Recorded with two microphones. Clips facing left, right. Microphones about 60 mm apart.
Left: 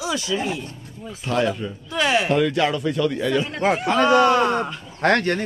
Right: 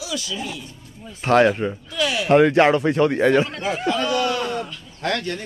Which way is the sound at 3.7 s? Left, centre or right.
Left.